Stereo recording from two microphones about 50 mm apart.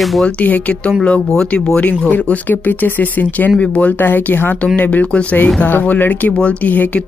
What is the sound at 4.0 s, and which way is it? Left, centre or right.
Speech, left.